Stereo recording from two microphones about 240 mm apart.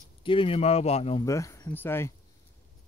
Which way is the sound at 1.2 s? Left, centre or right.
Centre.